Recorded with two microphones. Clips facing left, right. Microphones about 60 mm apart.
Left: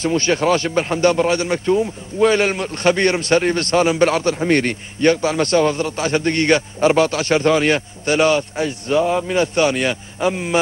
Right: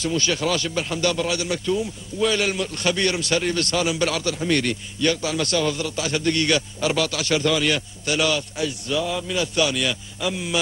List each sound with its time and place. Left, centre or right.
0.0 s speech: left